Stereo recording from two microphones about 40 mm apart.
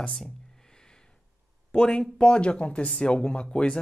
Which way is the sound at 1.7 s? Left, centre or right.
Centre.